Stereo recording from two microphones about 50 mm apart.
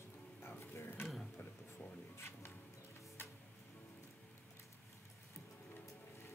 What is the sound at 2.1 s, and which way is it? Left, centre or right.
Music, left.